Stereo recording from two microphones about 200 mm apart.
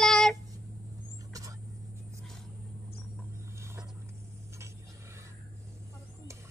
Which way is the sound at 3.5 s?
15° right (ahead or behind).